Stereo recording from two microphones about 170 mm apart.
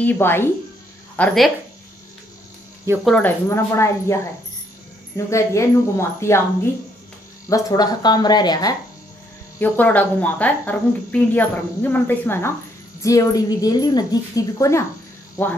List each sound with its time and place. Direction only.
0.0 s speech: 10° left (ahead or behind)
3.1 s a woman's voice: 10° left (ahead or behind)
9.6 s a woman's voice: 10° left (ahead or behind)